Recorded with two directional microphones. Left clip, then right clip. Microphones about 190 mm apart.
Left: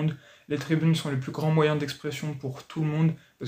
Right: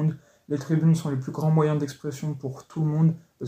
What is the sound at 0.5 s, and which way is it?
Speech, 20° left (ahead or behind).